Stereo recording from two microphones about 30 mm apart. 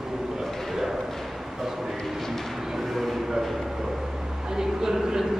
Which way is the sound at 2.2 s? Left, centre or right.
Centre.